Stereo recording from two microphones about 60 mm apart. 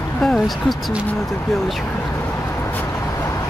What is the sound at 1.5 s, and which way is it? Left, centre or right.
Speech, centre.